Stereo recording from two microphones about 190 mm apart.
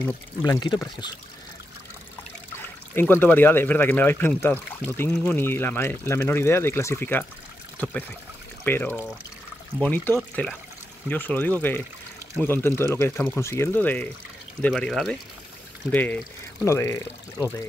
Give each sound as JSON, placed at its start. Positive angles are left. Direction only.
{"t": 0.0, "sound": "speech", "side_deg": 20}
{"t": 2.9, "sound": "speech", "side_deg": 10}
{"t": 8.6, "sound": "speech", "side_deg": 10}